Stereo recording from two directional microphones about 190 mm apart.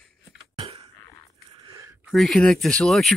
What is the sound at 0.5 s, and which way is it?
Beatboxing, 35° right (ahead or behind).